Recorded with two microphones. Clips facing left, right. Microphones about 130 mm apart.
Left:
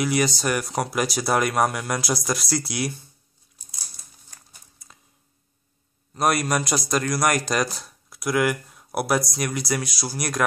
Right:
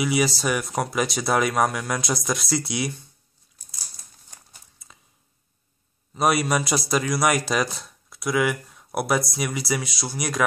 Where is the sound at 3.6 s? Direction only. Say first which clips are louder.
Left 1 dB; 15° left (ahead or behind).